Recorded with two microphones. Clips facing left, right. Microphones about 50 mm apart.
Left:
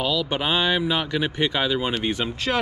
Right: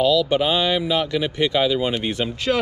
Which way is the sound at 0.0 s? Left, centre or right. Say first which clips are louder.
Right 6 dB; centre.